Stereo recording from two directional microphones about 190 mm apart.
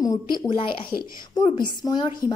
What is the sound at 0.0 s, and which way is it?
Speech, 20° left (ahead or behind).